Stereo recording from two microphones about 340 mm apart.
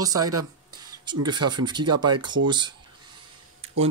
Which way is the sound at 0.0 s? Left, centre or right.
Centre.